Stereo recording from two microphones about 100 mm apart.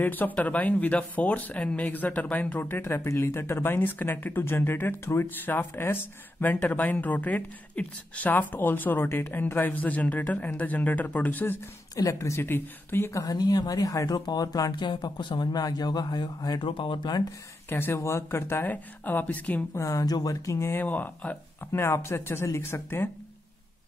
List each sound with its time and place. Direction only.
0.0 s speech: 20° left (ahead or behind)
11.9 s speech: 35° left (ahead or behind)
13.2 s speech: 40° left (ahead or behind)
16.6 s speech: 60° left (ahead or behind)
17.6 s speech: 20° left (ahead or behind)
19.8 s speech: 35° left (ahead or behind)
20.8 s speech: 15° left (ahead or behind)